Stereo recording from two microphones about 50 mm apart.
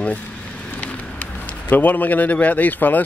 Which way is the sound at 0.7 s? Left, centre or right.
Left.